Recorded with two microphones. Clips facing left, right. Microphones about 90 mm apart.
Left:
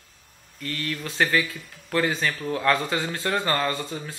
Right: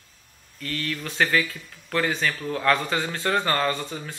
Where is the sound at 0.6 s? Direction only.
20° left (ahead or behind).